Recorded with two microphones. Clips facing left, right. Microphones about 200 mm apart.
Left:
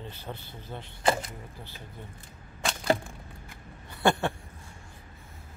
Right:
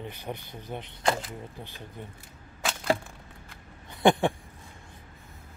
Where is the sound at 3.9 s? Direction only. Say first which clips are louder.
Right 4 dB; 20° right (ahead or behind).